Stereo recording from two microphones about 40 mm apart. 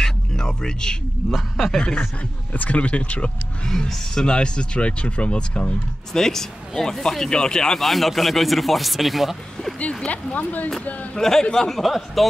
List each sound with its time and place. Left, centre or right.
0.0 s a sound: centre
1.7 s speech: left
2.7 s speech: left
3.6 s speech: centre
6.1 s speech: centre
7.8 s a man's voice: centre
10.0 s speech: left
11.1 s speech: centre
11.8 s a man's voice: centre